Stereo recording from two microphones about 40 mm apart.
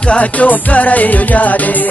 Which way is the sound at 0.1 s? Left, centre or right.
Left.